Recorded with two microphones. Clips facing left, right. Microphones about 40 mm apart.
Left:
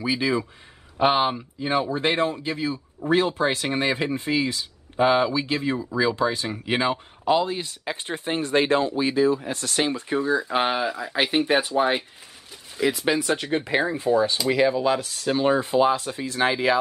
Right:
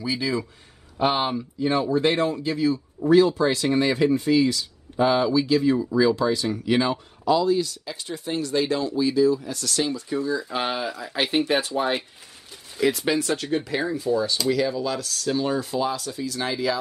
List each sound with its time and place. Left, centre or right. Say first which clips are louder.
0.0 s speech: left 2 dB; left
10.6 s speech: left 3 dB; centre
13.3 s speech: left 2 dB; left